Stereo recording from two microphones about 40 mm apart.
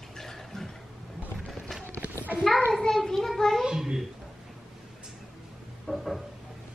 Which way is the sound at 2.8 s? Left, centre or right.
Centre.